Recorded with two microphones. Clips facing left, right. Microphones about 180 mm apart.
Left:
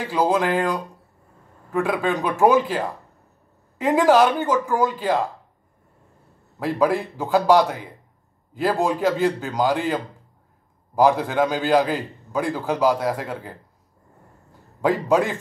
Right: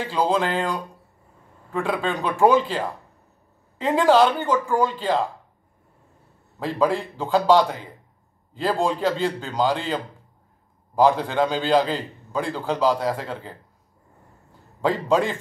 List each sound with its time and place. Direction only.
0.0 s a man's voice: 10° left (ahead or behind)
6.6 s a man's voice: 10° left (ahead or behind)
14.8 s a man's voice: 10° left (ahead or behind)